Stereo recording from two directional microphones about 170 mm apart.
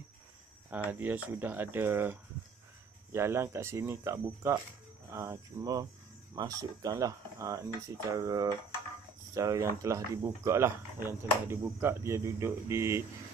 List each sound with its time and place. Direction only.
0.8 s speech: 10° right (ahead or behind)